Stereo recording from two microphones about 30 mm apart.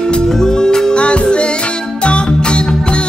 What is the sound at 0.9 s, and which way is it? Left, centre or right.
Music, left.